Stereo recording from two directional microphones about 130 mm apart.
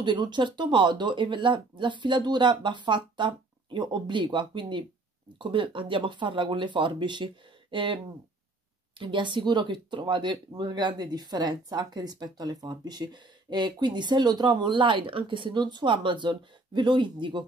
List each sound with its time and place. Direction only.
0.0 s speech: 35° right (ahead or behind)